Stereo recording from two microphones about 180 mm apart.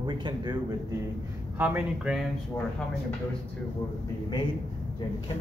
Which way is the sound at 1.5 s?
10° right (ahead or behind).